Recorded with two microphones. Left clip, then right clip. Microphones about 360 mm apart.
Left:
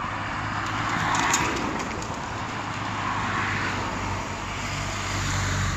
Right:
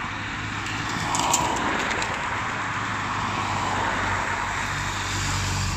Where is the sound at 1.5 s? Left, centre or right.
Right.